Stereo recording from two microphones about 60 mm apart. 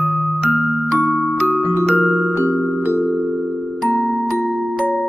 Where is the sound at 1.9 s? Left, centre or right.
Left.